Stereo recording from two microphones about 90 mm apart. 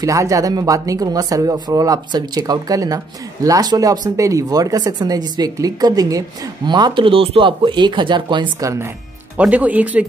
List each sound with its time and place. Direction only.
0.0 s speech: 40° right (ahead or behind)
6.7 s speech: 65° right (ahead or behind)
8.5 s speech: 35° right (ahead or behind)
9.4 s speech: 15° right (ahead or behind)